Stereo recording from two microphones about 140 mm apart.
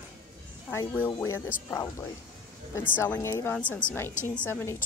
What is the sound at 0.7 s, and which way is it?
Speech, 10° left (ahead or behind).